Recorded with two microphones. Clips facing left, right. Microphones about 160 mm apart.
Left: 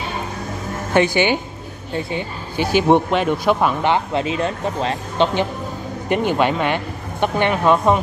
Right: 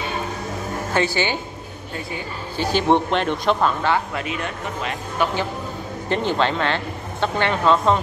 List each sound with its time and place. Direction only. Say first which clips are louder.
0.9 s a woman's voice: left 6 dB; 15° left (ahead or behind)
3.8 s a woman's voice: left 4 dB; 25° left (ahead or behind)